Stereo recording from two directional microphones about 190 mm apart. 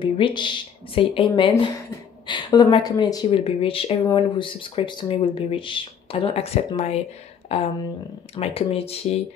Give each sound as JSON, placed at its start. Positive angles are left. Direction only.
{"t": 0.0, "sound": "speech", "side_deg": 25}